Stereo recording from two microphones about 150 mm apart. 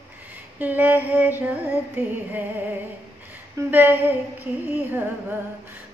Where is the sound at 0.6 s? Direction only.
10° right (ahead or behind).